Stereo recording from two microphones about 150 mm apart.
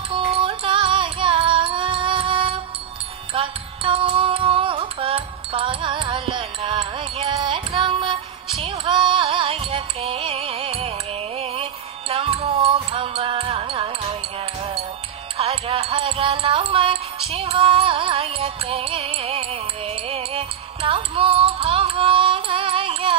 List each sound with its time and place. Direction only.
0.1 s music: 35° right (ahead or behind)
15.3 s music: 45° right (ahead or behind)